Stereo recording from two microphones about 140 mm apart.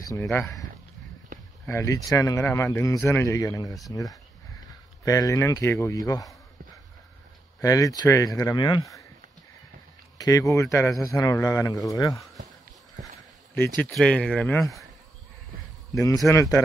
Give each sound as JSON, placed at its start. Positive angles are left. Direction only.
{"t": 0.0, "sound": "a man's voice", "side_deg": 20}
{"t": 1.7, "sound": "a man's voice", "side_deg": 20}
{"t": 5.0, "sound": "a man's voice", "side_deg": 25}
{"t": 7.6, "sound": "a man's voice", "side_deg": 25}
{"t": 10.1, "sound": "a man's voice", "side_deg": 25}
{"t": 13.8, "sound": "speech", "side_deg": 5}
{"t": 15.9, "sound": "a man's voice", "side_deg": 25}